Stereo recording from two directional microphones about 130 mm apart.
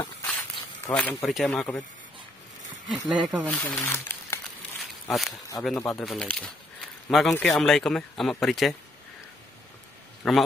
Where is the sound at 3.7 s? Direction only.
20° left (ahead or behind).